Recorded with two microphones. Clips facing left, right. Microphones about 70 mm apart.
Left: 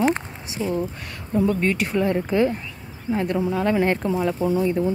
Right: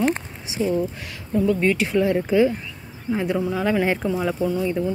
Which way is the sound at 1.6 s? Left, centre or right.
Centre.